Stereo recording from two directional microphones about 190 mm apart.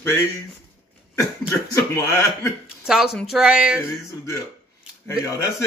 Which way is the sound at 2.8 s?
Centre (ahead or behind).